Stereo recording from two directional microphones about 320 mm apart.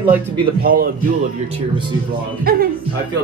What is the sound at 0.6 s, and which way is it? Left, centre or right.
Speech, right.